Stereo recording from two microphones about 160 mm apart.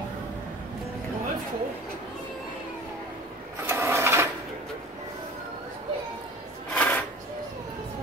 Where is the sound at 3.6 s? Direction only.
15° right (ahead or behind).